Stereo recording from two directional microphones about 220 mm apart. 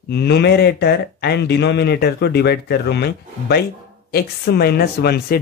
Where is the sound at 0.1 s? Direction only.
50° left (ahead or behind).